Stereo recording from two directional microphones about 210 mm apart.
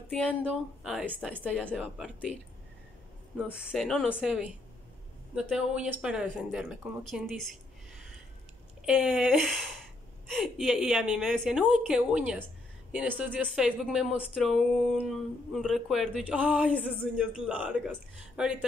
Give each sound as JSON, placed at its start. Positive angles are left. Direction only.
{"t": 0.1, "sound": "speech", "side_deg": 5}
{"t": 2.3, "sound": "speech", "side_deg": 30}
{"t": 3.4, "sound": "speech", "side_deg": 0}
{"t": 8.8, "sound": "speech", "side_deg": -5}